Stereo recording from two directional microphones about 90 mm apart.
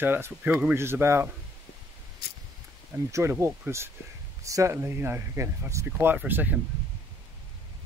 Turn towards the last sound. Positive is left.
turn(degrees=-20)  # may be behind; listen again after turning